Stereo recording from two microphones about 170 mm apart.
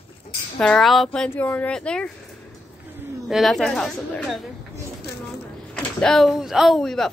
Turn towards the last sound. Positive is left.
turn(degrees=0)  # may be behind; listen again after turning